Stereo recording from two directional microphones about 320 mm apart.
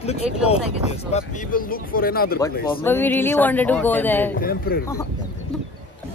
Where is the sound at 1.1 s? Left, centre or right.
Left.